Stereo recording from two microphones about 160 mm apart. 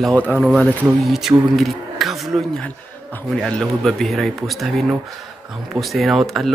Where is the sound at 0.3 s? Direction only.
Centre (ahead or behind).